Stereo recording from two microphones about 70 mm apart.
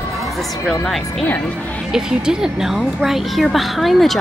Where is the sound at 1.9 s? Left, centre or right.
Centre.